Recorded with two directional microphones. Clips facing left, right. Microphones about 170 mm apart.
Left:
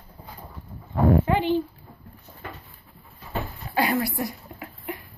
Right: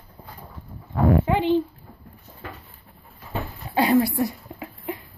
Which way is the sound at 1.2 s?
20° right (ahead or behind).